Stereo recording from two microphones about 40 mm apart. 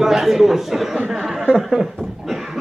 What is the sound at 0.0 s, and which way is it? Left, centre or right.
A man's voice, centre.